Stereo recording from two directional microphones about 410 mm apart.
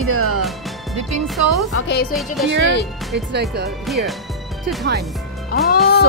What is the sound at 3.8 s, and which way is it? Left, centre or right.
Speech, centre.